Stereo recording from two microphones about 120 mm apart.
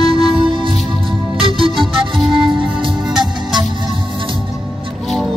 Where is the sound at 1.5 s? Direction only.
45° right (ahead or behind).